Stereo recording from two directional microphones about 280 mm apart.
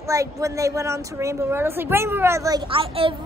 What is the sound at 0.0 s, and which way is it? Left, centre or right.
A woman's voice, centre.